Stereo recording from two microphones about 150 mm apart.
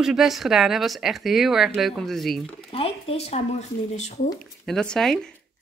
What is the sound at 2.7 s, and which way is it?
Speech, 40° left (ahead or behind).